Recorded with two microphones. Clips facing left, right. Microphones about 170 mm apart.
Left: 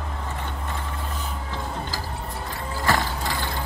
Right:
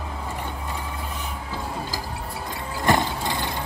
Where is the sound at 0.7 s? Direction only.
10° right (ahead or behind).